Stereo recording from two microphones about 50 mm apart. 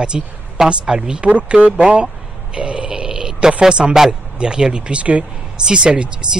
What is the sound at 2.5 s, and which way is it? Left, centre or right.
Grunt, centre.